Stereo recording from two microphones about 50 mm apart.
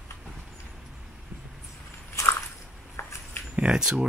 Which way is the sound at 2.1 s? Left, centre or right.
Left.